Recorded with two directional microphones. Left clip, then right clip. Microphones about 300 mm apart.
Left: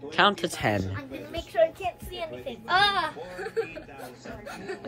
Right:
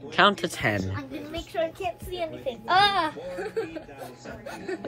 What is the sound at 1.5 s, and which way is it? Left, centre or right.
Speech, centre.